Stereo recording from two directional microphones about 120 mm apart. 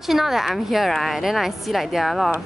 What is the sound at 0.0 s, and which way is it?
Speech, centre (ahead or behind).